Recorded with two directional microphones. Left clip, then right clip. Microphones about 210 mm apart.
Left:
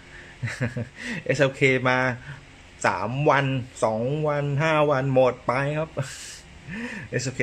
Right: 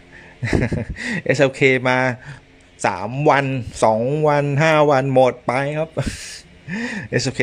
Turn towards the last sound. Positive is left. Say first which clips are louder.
# right 8 dB
turn(degrees=-30)  # may be behind; listen again after turning